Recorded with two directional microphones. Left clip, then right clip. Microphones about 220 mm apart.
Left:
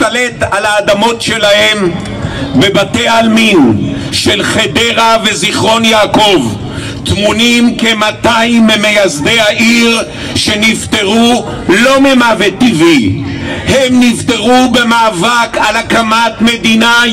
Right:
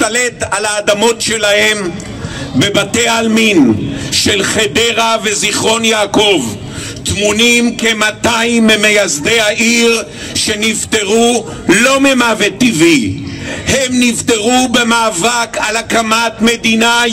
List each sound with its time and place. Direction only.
0.0 s a man's voice: 40° right (ahead or behind)